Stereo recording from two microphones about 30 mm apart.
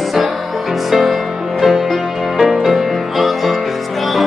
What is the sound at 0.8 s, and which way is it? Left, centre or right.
Music, centre.